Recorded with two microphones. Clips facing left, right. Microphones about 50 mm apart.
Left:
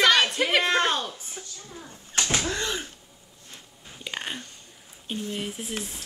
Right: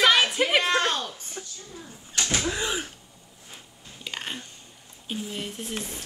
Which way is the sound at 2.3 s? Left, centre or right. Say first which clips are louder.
Right 4 dB; centre.